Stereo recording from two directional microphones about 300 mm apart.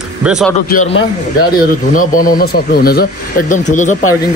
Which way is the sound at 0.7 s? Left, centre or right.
Left.